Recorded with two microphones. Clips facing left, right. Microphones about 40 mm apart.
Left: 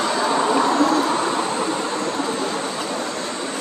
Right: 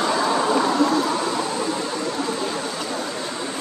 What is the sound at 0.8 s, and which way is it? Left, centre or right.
Vehicle, left.